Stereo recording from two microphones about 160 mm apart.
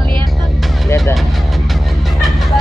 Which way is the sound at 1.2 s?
Centre (ahead or behind).